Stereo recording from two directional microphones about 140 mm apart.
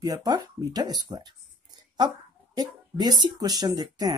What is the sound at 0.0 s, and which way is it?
Speech, 25° right (ahead or behind).